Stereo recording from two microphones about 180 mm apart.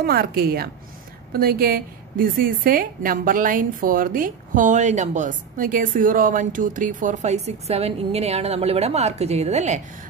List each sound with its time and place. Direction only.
0.0 s a woman's voice: 60° right (ahead or behind); by 9.8 s 40° right (ahead or behind)